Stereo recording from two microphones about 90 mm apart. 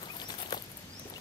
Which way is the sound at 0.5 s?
50° left (ahead or behind).